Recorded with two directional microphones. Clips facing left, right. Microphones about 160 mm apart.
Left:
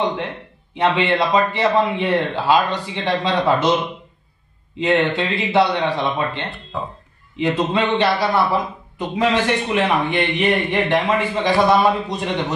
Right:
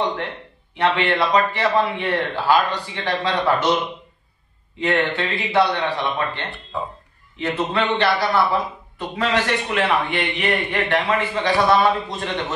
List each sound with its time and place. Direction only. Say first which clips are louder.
0.7 s a man's voice: left 2 dB; 20° left (ahead or behind)
4.7 s a man's voice: left 3 dB; 20° left (ahead or behind)